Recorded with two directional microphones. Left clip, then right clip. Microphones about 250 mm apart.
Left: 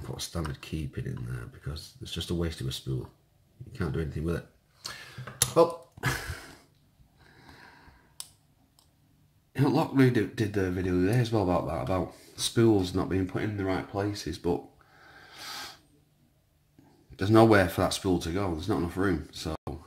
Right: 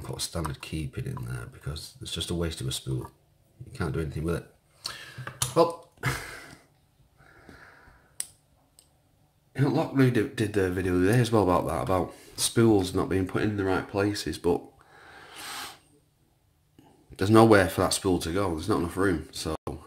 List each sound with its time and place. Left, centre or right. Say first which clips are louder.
0.0 s speech: right 3 dB; centre
3.7 s a sound: right 2 dB; centre
9.5 s a man's voice: even; centre
9.9 s speech: even; centre
13.3 s speech: right 4 dB; centre
15.0 s a sound: right 2 dB; centre
17.1 s speech: right 2 dB; centre